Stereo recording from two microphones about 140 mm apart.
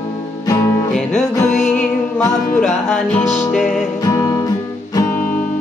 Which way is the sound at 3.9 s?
25° left (ahead or behind).